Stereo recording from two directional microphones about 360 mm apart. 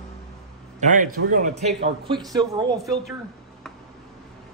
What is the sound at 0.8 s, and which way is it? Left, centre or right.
Speech, right.